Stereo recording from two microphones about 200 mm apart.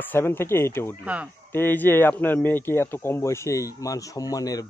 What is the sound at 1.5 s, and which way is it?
A man's voice, 10° left (ahead or behind).